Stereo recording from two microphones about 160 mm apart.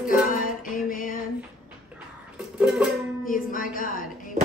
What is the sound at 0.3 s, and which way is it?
Music, 60° left (ahead or behind).